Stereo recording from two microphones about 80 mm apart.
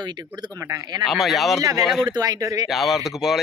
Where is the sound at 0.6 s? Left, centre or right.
Right.